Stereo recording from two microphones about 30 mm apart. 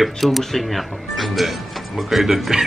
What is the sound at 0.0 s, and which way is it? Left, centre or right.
Speech, centre.